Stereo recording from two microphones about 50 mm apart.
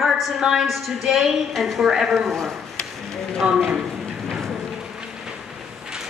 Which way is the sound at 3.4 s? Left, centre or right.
Right.